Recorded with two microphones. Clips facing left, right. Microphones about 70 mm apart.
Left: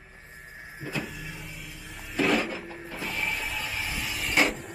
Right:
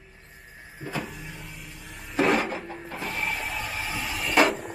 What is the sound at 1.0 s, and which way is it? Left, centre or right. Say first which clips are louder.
Vehicle: even; centre.